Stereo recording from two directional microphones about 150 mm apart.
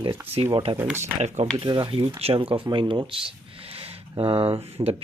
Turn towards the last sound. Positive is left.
turn(degrees=-40)  # may be behind; listen again after turning